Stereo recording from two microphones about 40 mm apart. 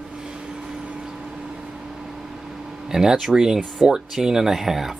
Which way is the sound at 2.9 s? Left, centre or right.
Centre.